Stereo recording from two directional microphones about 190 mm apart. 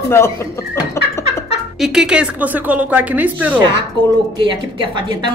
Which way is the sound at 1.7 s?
Centre (ahead or behind).